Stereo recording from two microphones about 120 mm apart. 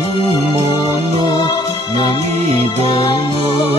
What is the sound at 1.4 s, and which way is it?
Music, 40° left (ahead or behind).